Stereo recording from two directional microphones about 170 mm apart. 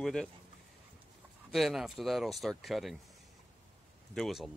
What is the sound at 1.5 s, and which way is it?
Speech, centre (ahead or behind).